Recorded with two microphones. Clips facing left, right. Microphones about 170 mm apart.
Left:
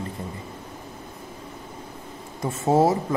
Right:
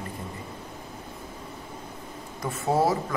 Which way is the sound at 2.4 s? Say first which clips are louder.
Left 5 dB; 25° left (ahead or behind).